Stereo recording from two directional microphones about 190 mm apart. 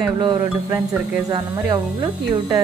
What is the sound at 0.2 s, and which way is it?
Speech, 20° right (ahead or behind).